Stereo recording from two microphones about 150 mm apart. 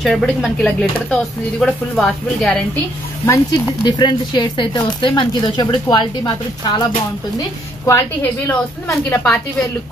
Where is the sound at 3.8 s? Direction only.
30° left (ahead or behind).